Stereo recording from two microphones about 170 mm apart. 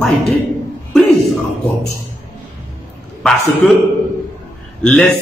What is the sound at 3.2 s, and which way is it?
Speech, centre (ahead or behind).